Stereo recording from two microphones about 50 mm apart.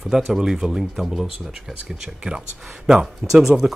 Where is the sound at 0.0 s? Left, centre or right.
Centre.